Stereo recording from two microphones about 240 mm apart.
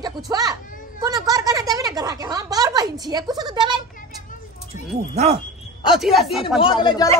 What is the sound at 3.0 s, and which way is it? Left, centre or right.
Speech, centre.